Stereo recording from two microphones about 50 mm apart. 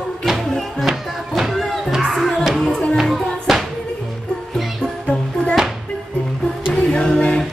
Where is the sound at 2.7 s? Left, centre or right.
Left.